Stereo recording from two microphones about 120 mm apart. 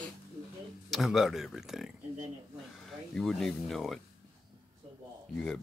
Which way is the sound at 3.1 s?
5° left (ahead or behind).